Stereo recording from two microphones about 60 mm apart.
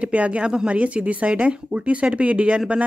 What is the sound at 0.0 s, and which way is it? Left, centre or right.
Speech, right.